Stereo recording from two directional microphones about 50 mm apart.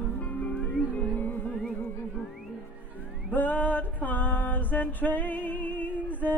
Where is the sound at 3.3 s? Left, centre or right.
Left.